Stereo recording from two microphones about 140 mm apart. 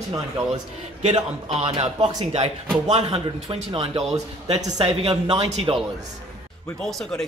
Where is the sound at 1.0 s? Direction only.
45° right (ahead or behind).